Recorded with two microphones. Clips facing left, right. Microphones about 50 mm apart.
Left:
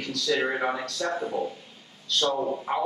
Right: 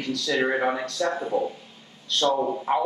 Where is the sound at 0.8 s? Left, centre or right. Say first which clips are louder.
Right 3 dB; right.